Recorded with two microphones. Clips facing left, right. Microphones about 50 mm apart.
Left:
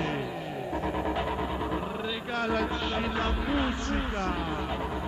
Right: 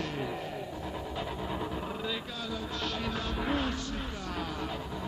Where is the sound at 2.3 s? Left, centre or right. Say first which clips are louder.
Left 9 dB; left.